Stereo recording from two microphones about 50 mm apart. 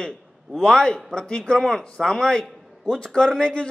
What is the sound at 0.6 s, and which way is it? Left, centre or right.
A man's voice, centre.